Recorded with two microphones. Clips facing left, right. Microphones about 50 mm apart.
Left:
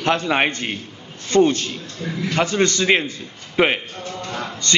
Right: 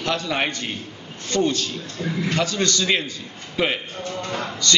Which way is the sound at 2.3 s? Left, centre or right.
Left.